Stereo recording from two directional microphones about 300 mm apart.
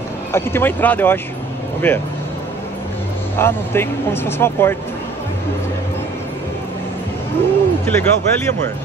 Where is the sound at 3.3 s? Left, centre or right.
Centre.